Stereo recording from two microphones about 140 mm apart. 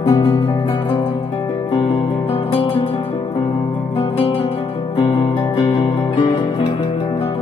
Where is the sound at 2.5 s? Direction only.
40° left (ahead or behind).